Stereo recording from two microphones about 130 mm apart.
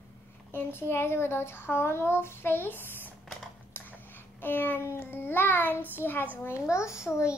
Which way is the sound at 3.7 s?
15° left (ahead or behind).